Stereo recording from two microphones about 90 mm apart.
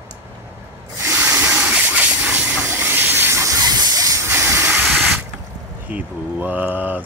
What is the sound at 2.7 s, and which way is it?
Hiss, 25° right (ahead or behind).